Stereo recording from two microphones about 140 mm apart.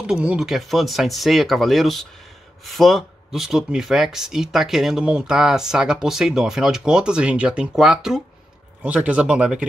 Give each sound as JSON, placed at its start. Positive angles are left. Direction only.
{"t": 0.0, "sound": "speech", "side_deg": -5}